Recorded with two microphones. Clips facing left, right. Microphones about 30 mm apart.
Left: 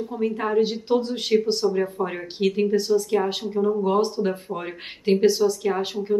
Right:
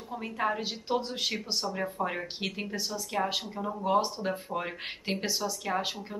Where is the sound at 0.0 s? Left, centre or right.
Centre.